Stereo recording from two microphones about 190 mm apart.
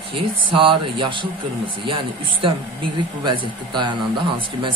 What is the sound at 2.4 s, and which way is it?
Speech, 25° right (ahead or behind).